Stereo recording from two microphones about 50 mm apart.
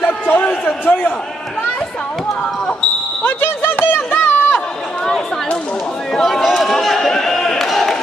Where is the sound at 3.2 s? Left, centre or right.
Left.